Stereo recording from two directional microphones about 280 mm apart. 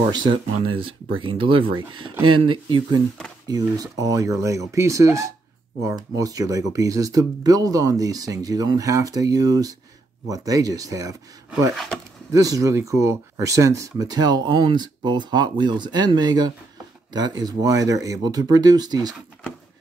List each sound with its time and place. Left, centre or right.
0.1 s speech: centre
12.3 s speech: centre